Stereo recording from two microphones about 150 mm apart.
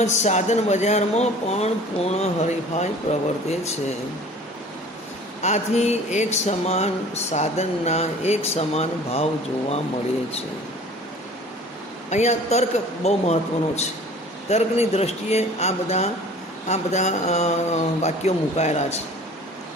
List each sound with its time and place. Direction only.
0.0 s speech: 50° left (ahead or behind)
5.4 s speech: 50° left (ahead or behind)
12.1 s speech: 50° left (ahead or behind)